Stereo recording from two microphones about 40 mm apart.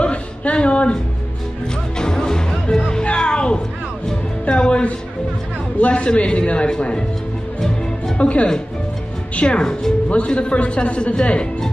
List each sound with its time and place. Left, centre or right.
0.0 s a sound: left
2.0 s music: centre
5.8 s a man's voice: left
8.2 s speech: left
9.6 s speech: centre
10.0 s a man's voice: left